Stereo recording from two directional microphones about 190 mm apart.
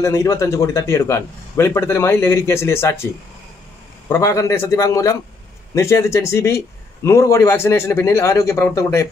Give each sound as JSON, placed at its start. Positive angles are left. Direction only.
{"t": 0.0, "sound": "a man's voice", "side_deg": 15}
{"t": 4.1, "sound": "a man's voice", "side_deg": 15}